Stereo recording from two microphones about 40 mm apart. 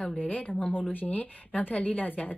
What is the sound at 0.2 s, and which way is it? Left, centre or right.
A woman's voice, left.